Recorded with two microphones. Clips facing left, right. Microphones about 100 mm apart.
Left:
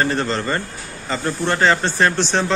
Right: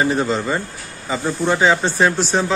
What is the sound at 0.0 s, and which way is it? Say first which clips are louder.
Speech: right 2 dB; 10° right (ahead or behind).